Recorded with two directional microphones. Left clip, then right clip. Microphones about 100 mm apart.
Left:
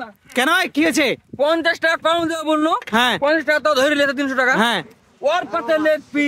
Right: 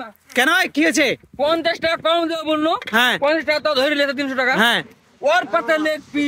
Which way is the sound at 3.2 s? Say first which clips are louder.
Left 1 dB; 20° left (ahead or behind).